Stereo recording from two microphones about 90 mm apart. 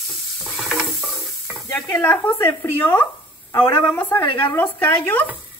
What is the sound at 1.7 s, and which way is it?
Speech, 25° left (ahead or behind).